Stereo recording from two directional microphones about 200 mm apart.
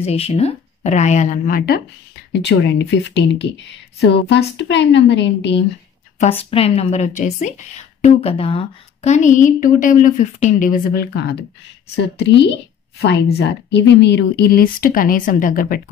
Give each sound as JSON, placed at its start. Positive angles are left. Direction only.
{"t": 0.0, "sound": "a woman's voice", "side_deg": 30}
{"t": 2.3, "sound": "speech", "side_deg": 60}
{"t": 6.1, "sound": "a woman's voice", "side_deg": 30}